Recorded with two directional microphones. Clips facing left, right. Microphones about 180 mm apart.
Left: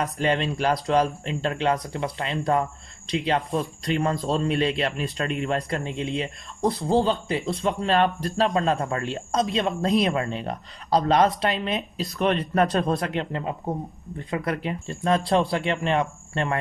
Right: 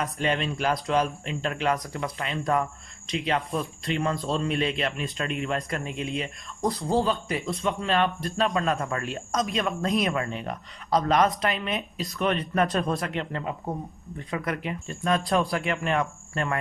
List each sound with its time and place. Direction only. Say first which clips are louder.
0.0 s speech: left 3 dB; 35° left (ahead or behind)